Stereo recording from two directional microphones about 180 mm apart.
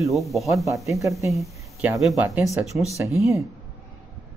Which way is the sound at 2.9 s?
15° left (ahead or behind).